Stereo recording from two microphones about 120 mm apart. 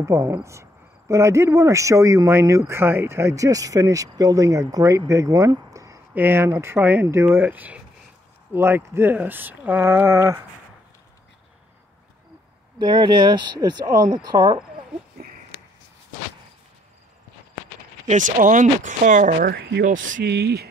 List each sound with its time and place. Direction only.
0.0 s speech: 25° right (ahead or behind)
12.7 s speech: 40° right (ahead or behind)
18.0 s speech: 90° right